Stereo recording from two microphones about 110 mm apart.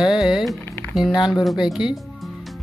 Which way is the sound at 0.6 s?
20° left (ahead or behind).